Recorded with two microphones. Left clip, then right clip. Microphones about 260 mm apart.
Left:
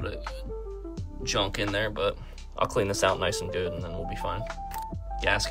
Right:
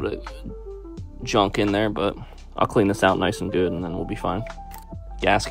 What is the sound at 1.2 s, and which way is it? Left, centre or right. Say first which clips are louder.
Speech: right 8 dB; centre.